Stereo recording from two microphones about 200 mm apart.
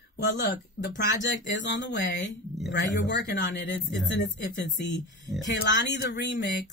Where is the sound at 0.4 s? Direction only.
55° left (ahead or behind).